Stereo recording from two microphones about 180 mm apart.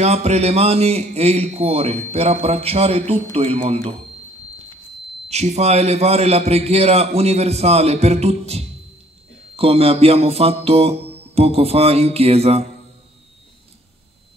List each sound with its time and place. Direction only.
0.0 s a man's voice: 35° right (ahead or behind)
5.3 s a man's voice: 35° right (ahead or behind)